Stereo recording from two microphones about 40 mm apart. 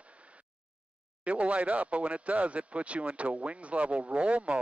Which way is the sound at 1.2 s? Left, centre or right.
Right.